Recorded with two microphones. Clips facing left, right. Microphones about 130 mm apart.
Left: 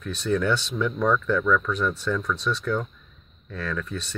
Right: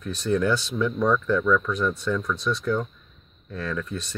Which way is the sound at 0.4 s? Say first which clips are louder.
Right 1 dB; 5° right (ahead or behind).